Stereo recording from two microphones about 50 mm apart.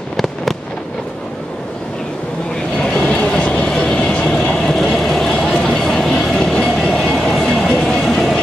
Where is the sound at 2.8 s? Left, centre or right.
Centre.